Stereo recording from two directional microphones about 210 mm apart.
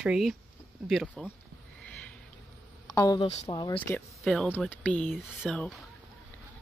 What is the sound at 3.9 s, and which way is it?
Speech, 5° left (ahead or behind).